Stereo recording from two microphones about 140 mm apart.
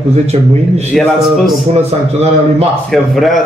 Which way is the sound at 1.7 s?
45° right (ahead or behind).